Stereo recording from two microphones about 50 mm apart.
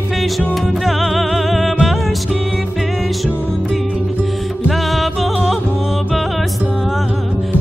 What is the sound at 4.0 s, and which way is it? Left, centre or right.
Music, right.